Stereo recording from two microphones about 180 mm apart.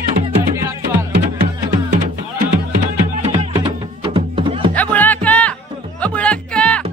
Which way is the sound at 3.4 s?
30° right (ahead or behind).